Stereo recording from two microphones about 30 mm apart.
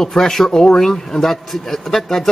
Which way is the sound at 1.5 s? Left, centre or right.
Centre.